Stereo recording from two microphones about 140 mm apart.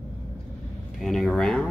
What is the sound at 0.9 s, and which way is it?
Speech, centre (ahead or behind).